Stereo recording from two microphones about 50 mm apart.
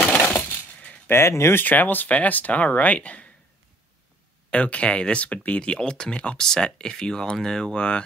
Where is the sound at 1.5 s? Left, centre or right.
Left.